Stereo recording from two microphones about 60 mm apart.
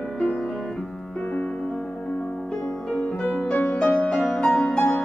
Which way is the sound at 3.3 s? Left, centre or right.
Left.